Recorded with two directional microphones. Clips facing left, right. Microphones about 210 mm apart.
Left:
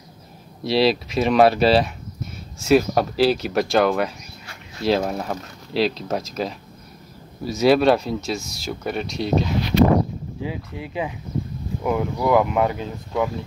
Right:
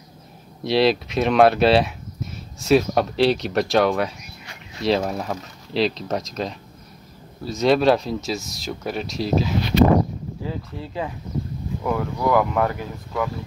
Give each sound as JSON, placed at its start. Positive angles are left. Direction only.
{"t": 0.7, "sound": "speech", "side_deg": 0}
{"t": 10.4, "sound": "speech", "side_deg": 15}